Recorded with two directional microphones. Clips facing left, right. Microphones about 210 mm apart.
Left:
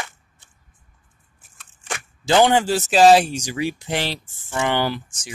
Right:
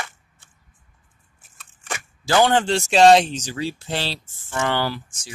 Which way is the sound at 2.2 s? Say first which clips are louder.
Left 2 dB; 15° left (ahead or behind).